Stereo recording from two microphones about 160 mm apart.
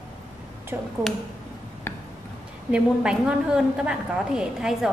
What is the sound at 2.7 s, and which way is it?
A woman's voice, 5° right (ahead or behind).